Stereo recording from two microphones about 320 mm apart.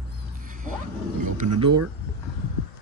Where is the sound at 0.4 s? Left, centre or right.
Right.